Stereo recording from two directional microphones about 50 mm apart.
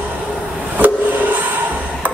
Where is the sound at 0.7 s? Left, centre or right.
Right.